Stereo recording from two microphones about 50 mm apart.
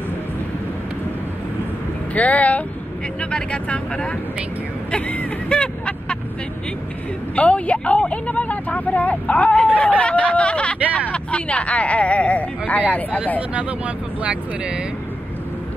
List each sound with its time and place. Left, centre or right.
2.1 s speech: left
4.9 s vehicle: left
7.3 s speech: left
9.8 s a sound: left
13.6 s speech: right